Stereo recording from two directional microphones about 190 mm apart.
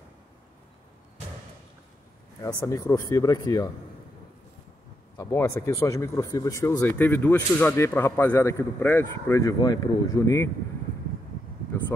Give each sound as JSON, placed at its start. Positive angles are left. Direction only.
{"t": 2.4, "sound": "speech", "side_deg": 15}
{"t": 5.1, "sound": "speech", "side_deg": 15}
{"t": 11.7, "sound": "a sound", "side_deg": 15}